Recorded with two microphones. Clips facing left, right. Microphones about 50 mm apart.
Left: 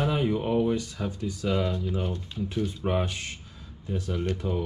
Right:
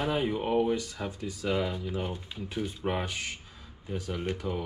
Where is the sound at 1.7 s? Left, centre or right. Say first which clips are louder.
Left 3 dB; centre.